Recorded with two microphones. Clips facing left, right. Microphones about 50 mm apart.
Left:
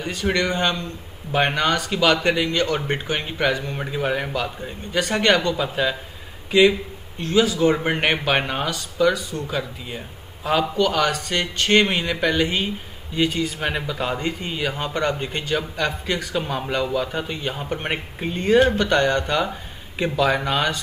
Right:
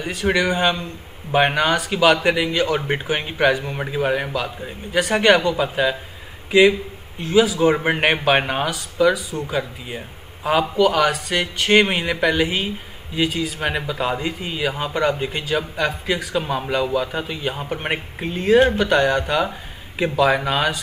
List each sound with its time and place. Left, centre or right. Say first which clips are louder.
0.0 s speech: right 2 dB; centre
3.3 s speech: right 5 dB; right
3.6 s speech: right 3 dB; centre
7.2 s speech: right 2 dB; centre